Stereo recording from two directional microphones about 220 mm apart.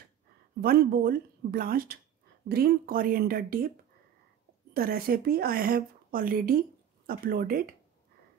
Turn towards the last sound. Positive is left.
turn(degrees=-40)  # may be behind; listen again after turning